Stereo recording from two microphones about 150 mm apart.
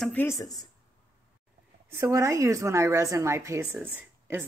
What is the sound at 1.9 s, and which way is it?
A woman's voice, 20° right (ahead or behind).